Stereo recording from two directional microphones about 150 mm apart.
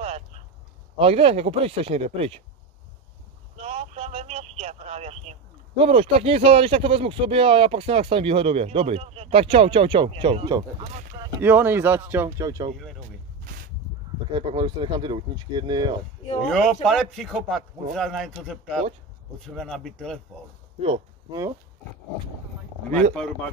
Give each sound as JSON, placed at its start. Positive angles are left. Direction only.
{"t": 0.0, "sound": "a sound", "side_deg": -45}
{"t": 0.9, "sound": "speech", "side_deg": -40}
{"t": 3.5, "sound": "speech", "side_deg": -45}
{"t": 11.4, "sound": "speech", "side_deg": -15}
{"t": 13.4, "sound": "a sound", "side_deg": -75}
{"t": 14.3, "sound": "speech", "side_deg": -30}
{"t": 16.4, "sound": "speech", "side_deg": 5}
{"t": 21.3, "sound": "speech", "side_deg": -25}
{"t": 22.8, "sound": "speech", "side_deg": -50}